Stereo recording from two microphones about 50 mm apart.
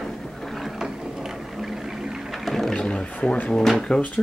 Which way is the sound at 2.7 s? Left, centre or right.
Centre.